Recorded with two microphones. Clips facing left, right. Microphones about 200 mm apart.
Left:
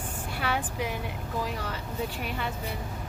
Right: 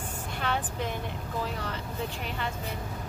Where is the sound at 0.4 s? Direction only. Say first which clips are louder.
Left 1 dB; 10° left (ahead or behind).